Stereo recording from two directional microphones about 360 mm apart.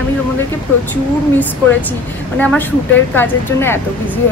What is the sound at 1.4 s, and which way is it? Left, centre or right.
Speech, centre.